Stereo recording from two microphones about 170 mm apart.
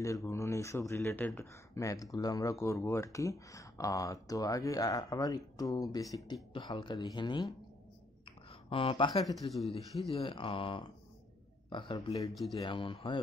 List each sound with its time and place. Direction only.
0.0 s speech: 15° left (ahead or behind)
8.3 s a sound: 30° left (ahead or behind)
9.3 s speech: centre (ahead or behind)
10.1 s speech: 30° left (ahead or behind)